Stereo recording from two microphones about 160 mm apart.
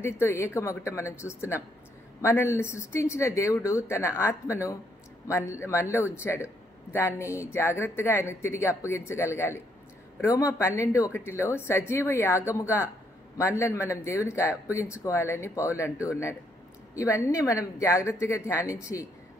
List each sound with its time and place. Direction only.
0.0 s a woman's voice: 15° left (ahead or behind)